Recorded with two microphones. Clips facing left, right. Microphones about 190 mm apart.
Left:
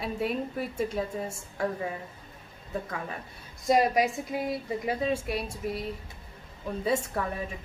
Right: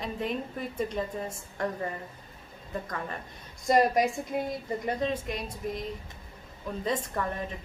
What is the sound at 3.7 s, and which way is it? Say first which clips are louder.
A woman's voice: even; centre (ahead or behind).